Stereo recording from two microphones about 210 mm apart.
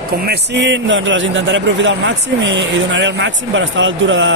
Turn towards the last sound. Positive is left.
turn(degrees=-65)  # may be behind; listen again after turning